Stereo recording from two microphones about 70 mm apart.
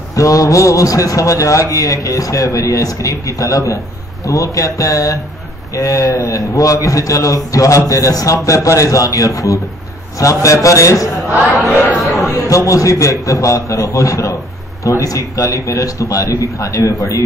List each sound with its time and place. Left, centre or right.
0.1 s a man's voice: left
12.0 s a man's voice: centre
12.4 s a man's voice: left